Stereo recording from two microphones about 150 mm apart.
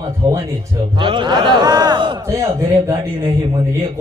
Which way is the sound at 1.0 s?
30° right (ahead or behind).